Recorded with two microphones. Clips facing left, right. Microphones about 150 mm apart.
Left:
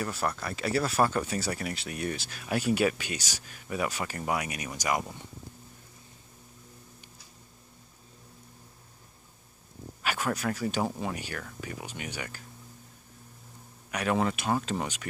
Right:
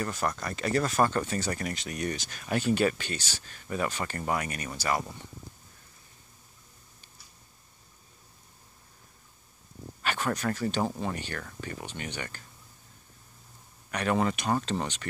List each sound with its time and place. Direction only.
0.0 s speech: 5° left (ahead or behind)
10.0 s speech: 10° left (ahead or behind)
13.8 s speech: 5° left (ahead or behind)